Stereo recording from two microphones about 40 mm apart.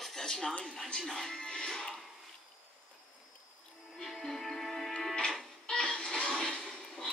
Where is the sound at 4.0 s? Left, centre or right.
Centre.